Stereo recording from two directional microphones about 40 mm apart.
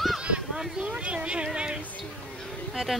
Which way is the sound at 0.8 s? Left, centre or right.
Right.